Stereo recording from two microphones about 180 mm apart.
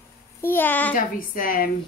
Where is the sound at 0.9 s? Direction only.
50° left (ahead or behind).